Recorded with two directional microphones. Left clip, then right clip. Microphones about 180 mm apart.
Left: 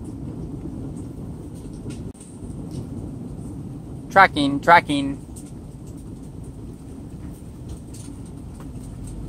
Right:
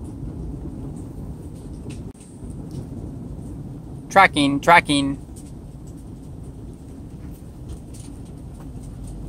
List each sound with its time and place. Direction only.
4.1 s speech: 35° right (ahead or behind)